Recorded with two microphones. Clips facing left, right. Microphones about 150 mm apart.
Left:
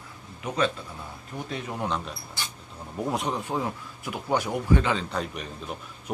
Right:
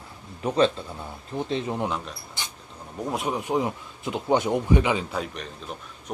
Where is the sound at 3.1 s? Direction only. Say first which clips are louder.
Right 1 dB; centre (ahead or behind).